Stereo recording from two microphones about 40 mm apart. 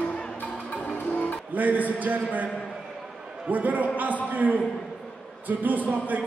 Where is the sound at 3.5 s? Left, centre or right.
Right.